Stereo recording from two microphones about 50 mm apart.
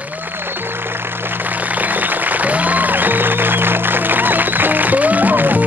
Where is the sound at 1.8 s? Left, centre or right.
Right.